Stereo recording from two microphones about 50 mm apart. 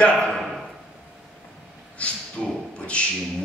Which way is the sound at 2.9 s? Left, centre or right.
Left.